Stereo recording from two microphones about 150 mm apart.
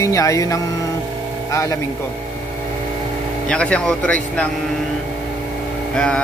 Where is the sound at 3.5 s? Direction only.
5° left (ahead or behind).